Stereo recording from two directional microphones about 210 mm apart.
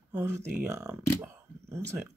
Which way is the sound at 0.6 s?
10° right (ahead or behind).